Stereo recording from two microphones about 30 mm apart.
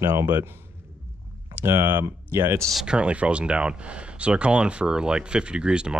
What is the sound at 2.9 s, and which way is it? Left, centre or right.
Speech, right.